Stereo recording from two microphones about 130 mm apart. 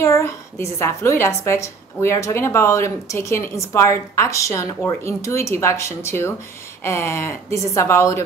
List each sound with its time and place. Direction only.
0.0 s a woman's voice: 20° left (ahead or behind)